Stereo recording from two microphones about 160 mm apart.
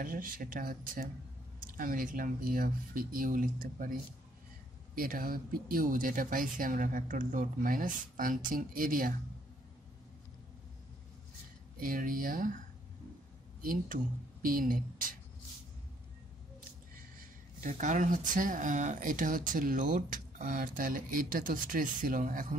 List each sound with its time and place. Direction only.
0.0 s speech: 60° right (ahead or behind)
4.9 s speech: 65° right (ahead or behind)
11.8 s speech: 60° right (ahead or behind)
14.4 s speech: 60° right (ahead or behind)
16.9 s speech: 60° right (ahead or behind)